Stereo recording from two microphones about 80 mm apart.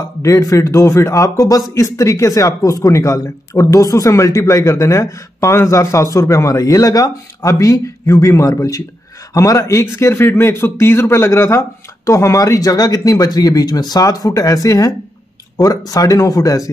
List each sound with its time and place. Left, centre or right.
0.2 s speech: left